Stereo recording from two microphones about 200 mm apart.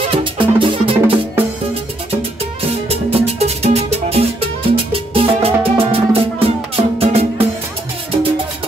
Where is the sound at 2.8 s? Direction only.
30° right (ahead or behind).